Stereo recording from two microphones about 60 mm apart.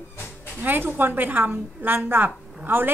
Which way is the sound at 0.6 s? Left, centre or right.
Right.